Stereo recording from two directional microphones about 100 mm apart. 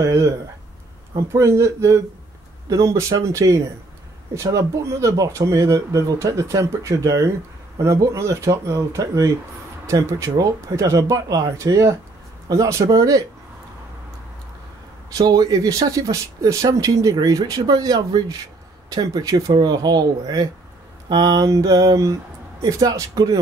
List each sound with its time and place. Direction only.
0.0 s speech: 35° right (ahead or behind)
15.1 s speech: 40° right (ahead or behind)